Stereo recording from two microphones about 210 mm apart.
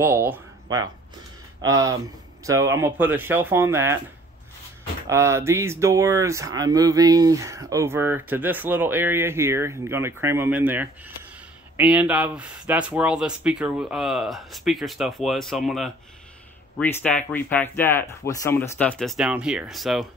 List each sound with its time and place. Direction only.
0.0 s speech: 10° right (ahead or behind)
5.0 s speech: 15° right (ahead or behind)